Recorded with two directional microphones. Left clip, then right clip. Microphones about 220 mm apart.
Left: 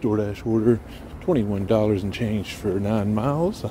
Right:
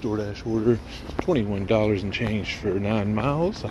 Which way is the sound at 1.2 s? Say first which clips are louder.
Left 1 dB; 25° left (ahead or behind).